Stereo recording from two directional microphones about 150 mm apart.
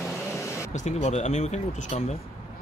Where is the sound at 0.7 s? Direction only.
50° left (ahead or behind).